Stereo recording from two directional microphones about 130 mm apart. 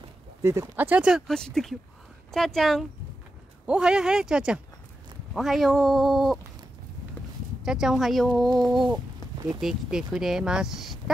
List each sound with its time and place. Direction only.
0.4 s speech: 20° right (ahead or behind); by 6.4 s centre (ahead or behind)
7.2 s clip-clop: 15° left (ahead or behind)
7.6 s speech: 5° right (ahead or behind)